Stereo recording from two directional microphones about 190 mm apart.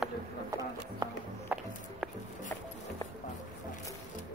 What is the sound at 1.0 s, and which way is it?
Music, 20° right (ahead or behind).